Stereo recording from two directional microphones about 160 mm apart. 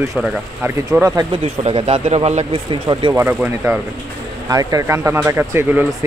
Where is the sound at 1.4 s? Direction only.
40° right (ahead or behind).